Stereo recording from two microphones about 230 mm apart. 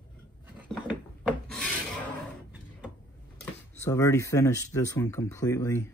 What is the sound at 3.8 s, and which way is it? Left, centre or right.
Speech, centre.